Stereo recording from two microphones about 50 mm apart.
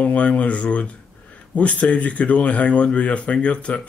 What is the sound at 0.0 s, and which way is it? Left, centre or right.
Speech, left.